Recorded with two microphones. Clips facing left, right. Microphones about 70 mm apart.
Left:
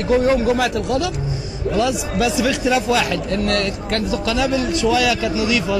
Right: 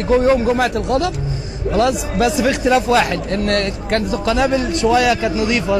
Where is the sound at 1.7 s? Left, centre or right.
Right.